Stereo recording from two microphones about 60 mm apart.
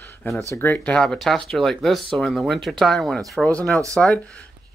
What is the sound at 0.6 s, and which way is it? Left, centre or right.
Speech, left.